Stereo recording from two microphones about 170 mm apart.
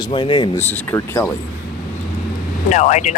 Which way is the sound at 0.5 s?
15° left (ahead or behind).